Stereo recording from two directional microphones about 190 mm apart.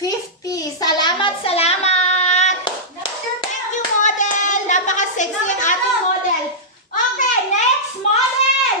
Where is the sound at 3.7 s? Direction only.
40° left (ahead or behind).